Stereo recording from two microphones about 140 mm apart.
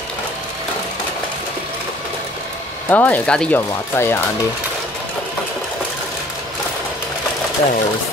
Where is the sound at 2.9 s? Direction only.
10° left (ahead or behind).